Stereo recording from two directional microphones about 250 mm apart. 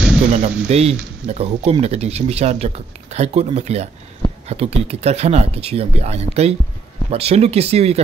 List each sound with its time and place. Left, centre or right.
0.3 s speech: right